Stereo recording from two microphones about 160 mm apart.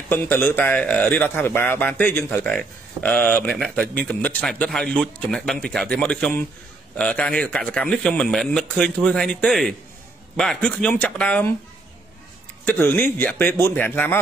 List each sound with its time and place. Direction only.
0.1 s a man's voice: 15° left (ahead or behind)
12.6 s a man's voice: 15° left (ahead or behind)